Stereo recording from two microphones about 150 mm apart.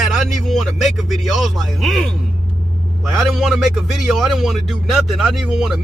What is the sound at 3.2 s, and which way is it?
Speech, centre (ahead or behind).